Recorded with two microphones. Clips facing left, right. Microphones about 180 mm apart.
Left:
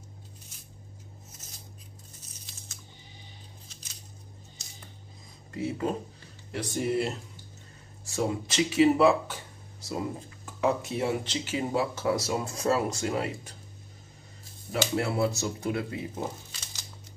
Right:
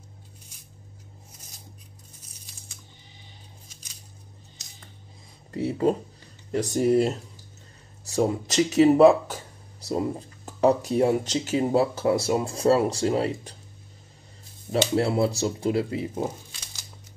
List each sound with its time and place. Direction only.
5.6 s speech: 35° right (ahead or behind)
14.7 s speech: 30° right (ahead or behind)